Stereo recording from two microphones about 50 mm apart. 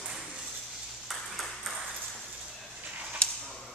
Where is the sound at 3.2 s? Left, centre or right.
Left.